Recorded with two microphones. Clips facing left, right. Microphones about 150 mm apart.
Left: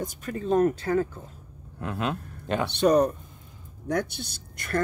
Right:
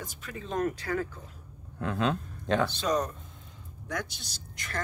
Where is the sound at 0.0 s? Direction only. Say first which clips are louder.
Left 9 dB; 45° left (ahead or behind).